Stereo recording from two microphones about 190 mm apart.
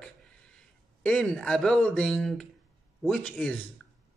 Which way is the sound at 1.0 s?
5° left (ahead or behind).